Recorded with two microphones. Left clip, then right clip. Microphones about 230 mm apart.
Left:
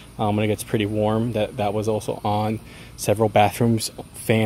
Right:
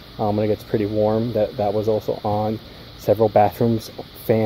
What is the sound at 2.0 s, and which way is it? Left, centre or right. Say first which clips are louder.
Speech: right 2 dB; left.